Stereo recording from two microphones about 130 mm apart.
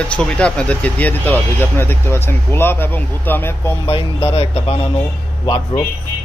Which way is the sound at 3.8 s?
40° left (ahead or behind).